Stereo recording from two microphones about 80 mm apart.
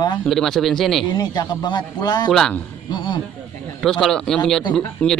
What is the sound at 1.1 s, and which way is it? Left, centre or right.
A man's voice, left.